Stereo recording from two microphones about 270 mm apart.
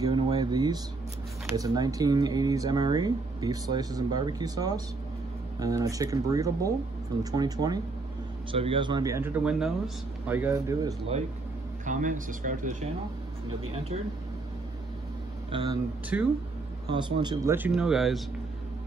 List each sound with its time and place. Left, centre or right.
0.0 s a sound: centre
1.5 s speech: centre
11.8 s speech: right
16.1 s speech: centre
16.9 s speech: centre